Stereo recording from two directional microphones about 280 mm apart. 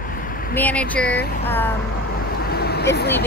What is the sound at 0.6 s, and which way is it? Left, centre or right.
Speech, centre.